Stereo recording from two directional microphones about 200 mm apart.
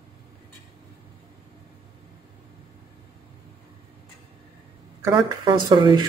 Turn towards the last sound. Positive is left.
turn(degrees=-20)  # may be behind; listen again after turning